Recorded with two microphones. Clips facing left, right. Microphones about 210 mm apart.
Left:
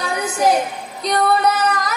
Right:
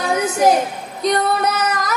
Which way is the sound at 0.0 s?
50° right (ahead or behind).